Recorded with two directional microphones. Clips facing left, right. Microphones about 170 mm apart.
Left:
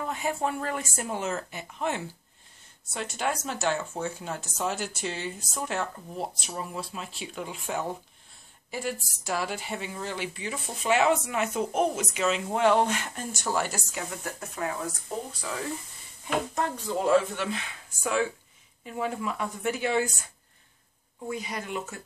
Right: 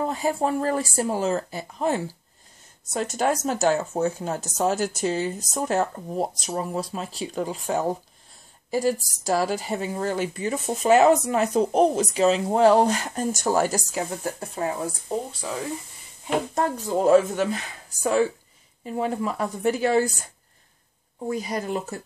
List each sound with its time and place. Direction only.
0.0 s speech: 35° right (ahead or behind)
16.3 s speech: 35° right (ahead or behind)
21.3 s speech: 40° right (ahead or behind)